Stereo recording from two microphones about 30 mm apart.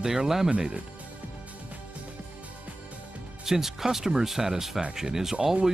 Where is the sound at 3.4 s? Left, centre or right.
Centre.